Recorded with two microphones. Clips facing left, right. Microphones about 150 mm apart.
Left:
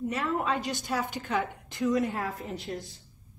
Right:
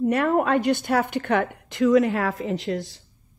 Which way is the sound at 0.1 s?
60° right (ahead or behind).